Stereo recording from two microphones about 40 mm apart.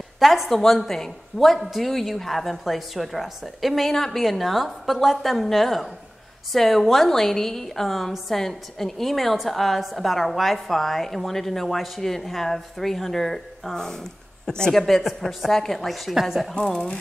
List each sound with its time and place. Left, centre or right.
0.2 s a woman's voice: centre
14.7 s a woman's voice: centre
16.1 s speech: centre